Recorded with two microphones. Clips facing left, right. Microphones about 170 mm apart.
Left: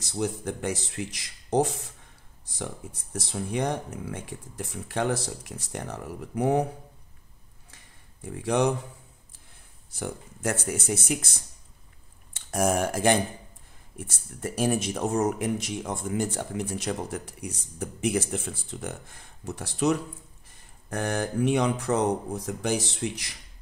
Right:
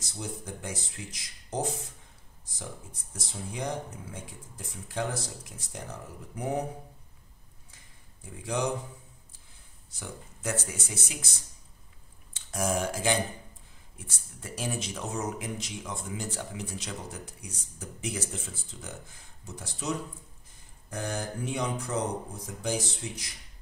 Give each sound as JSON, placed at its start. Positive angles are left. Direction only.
{"t": 0.0, "sound": "speech", "side_deg": 70}
{"t": 8.3, "sound": "speech", "side_deg": 65}
{"t": 9.9, "sound": "speech", "side_deg": 55}
{"t": 12.4, "sound": "speech", "side_deg": 55}